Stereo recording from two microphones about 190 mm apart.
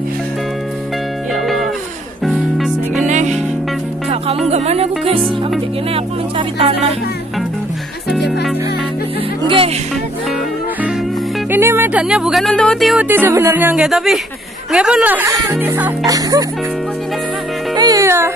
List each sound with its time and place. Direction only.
1.3 s music: centre (ahead or behind)
3.1 s music: 40° right (ahead or behind)
4.5 s music: 35° right (ahead or behind)
5.9 s speech: 30° right (ahead or behind)
11.5 s speech: 10° right (ahead or behind)
13.1 s speech: 10° right (ahead or behind)
17.7 s music: 20° right (ahead or behind)